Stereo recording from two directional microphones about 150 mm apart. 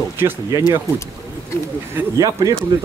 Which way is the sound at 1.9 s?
25° right (ahead or behind).